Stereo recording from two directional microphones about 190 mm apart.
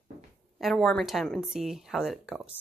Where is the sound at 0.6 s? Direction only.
Centre (ahead or behind).